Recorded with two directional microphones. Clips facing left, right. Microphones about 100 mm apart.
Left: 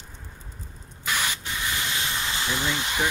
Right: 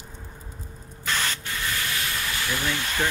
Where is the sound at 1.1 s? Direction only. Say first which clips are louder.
Even; 15° left (ahead or behind).